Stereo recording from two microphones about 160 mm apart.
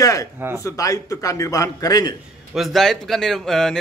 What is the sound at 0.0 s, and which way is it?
A man's voice, 20° left (ahead or behind).